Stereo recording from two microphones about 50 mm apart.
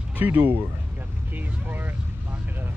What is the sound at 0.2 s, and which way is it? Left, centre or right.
Speech, right.